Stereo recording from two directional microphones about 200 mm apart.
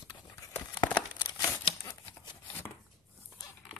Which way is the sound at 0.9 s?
10° left (ahead or behind).